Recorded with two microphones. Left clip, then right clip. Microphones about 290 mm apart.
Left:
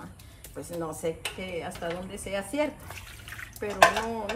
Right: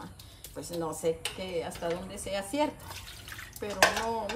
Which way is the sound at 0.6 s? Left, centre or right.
Centre.